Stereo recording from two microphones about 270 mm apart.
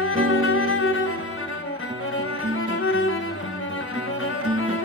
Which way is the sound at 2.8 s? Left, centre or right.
Left.